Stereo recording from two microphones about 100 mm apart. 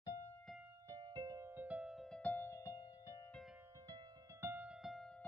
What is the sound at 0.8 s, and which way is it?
Music, 40° right (ahead or behind).